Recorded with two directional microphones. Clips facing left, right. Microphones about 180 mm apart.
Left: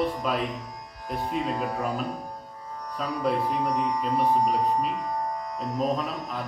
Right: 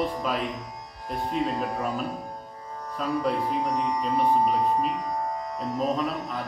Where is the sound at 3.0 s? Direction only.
Centre (ahead or behind).